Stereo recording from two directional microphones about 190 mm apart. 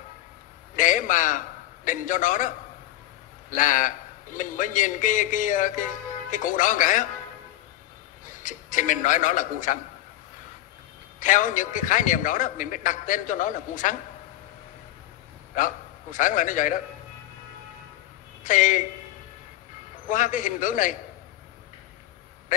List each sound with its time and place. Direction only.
0.7 s a sound: 45° left (ahead or behind)
1.9 s a man's voice: 45° left (ahead or behind)
3.5 s a man's voice: 45° left (ahead or behind)
8.3 s a man's voice: 45° left (ahead or behind)
11.1 s a man's voice: 45° left (ahead or behind)
15.5 s a man's voice: 45° left (ahead or behind)
18.4 s a man's voice: 45° left (ahead or behind)
20.1 s a man's voice: 45° left (ahead or behind)